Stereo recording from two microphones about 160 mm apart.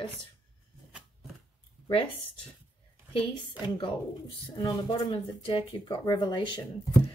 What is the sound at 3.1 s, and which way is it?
A woman's voice, 30° left (ahead or behind).